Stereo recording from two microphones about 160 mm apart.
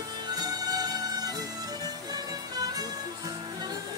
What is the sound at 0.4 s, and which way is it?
Music, 25° right (ahead or behind).